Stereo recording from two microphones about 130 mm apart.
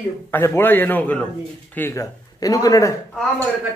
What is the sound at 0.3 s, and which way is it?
A man's voice, 15° left (ahead or behind).